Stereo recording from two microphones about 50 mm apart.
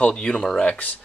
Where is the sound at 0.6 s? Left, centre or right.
Left.